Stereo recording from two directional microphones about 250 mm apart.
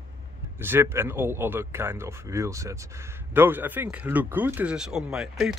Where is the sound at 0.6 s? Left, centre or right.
Centre.